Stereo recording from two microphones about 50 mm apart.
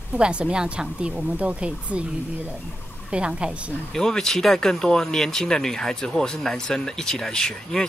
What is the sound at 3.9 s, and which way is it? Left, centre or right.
Speech, centre.